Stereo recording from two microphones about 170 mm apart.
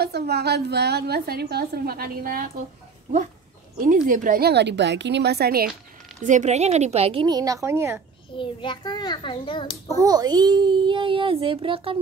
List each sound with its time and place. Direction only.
0.0 s a woman's voice: 75° right (ahead or behind)
3.7 s a woman's voice: 55° right (ahead or behind)
6.2 s a woman's voice: 45° right (ahead or behind); by 8.0 s 15° right (ahead or behind)
8.4 s a child's voice: 30° left (ahead or behind)
9.9 s a child's voice: 20° right (ahead or behind)